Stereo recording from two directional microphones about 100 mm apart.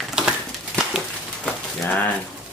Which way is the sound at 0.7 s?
5° right (ahead or behind).